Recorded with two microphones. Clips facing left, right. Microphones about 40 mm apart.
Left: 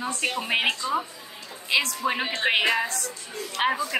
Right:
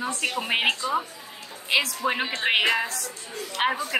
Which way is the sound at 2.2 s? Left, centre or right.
Centre.